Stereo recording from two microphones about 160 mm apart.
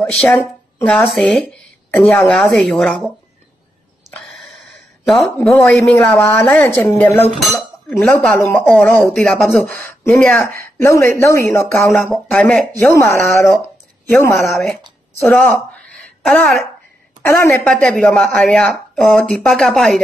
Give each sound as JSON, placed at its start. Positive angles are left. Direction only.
{"t": 0.8, "sound": "a woman's voice", "side_deg": 0}
{"t": 4.1, "sound": "speech", "side_deg": 0}
{"t": 7.3, "sound": "a woman's voice", "side_deg": 0}
{"t": 7.9, "sound": "a woman's voice", "side_deg": 10}
{"t": 10.8, "sound": "speech", "side_deg": 15}
{"t": 12.1, "sound": "a woman's voice", "side_deg": 0}
{"t": 12.7, "sound": "speech", "side_deg": 15}
{"t": 14.4, "sound": "a woman's voice", "side_deg": 0}
{"t": 17.2, "sound": "speech", "side_deg": 15}
{"t": 17.8, "sound": "a woman's voice", "side_deg": 5}